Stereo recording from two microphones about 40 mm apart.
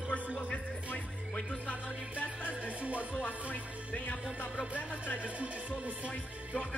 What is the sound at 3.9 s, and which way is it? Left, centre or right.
Music, left.